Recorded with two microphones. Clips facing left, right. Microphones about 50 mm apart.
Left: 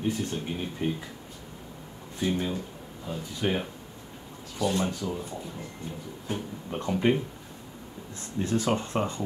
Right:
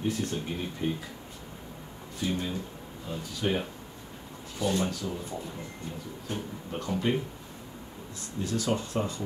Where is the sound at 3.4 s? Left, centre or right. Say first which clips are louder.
Left 1 dB; centre.